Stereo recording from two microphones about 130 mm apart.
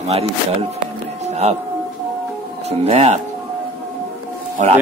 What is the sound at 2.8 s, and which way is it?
Speech, 55° right (ahead or behind).